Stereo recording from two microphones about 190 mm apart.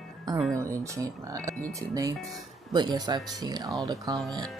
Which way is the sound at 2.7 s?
20° right (ahead or behind).